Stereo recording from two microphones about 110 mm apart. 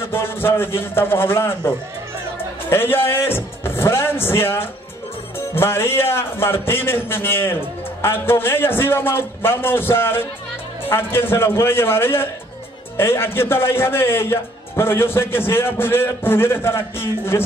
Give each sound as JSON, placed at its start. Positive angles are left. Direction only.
{"t": 0.0, "sound": "a man's voice", "side_deg": 20}
{"t": 2.7, "sound": "a man's voice", "side_deg": 20}